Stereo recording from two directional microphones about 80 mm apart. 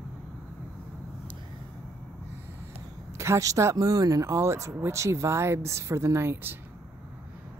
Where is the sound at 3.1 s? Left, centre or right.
Right.